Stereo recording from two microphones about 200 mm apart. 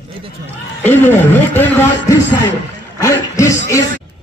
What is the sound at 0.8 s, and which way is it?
A man's voice, 10° left (ahead or behind).